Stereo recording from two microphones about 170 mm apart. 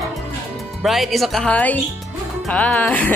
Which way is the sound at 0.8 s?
Centre (ahead or behind).